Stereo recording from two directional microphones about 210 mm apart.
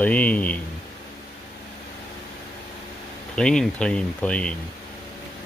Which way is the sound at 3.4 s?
5° left (ahead or behind).